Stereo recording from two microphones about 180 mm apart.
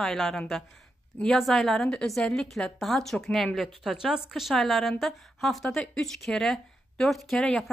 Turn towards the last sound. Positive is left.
turn(degrees=5)  # may be behind; listen again after turning